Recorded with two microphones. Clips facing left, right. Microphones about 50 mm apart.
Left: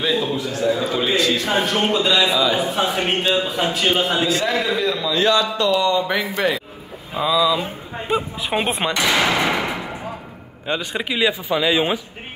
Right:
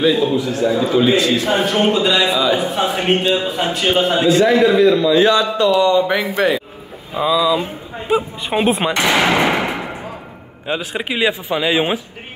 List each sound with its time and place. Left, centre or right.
0.0 s a man's voice: centre; by 6.6 s right
7.2 s a man's voice: centre
8.1 s a man's voice: centre
8.9 s a sound: right
10.7 s a man's voice: centre
11.1 s a man's voice: right